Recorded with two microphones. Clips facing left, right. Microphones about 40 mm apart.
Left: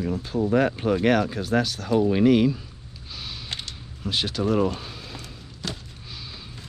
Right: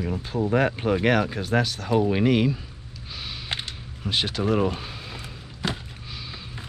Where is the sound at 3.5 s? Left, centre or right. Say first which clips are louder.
Right 5 dB; right.